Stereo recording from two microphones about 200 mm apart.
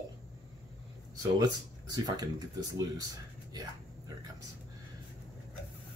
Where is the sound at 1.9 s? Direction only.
20° right (ahead or behind).